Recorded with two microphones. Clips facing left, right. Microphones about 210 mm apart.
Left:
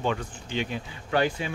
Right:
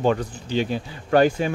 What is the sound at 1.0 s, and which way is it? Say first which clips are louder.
Speech: right 8 dB; 45° right (ahead or behind).